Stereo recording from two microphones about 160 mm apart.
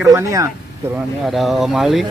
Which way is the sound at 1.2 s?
Centre (ahead or behind).